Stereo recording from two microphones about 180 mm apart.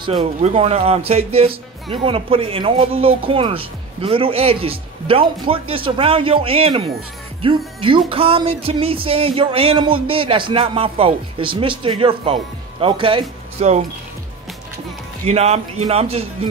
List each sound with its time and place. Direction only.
0.0 s speech: 30° right (ahead or behind)
15.2 s speech: 35° right (ahead or behind)